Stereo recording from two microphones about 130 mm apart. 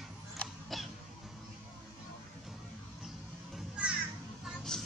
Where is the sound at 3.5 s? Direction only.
5° right (ahead or behind).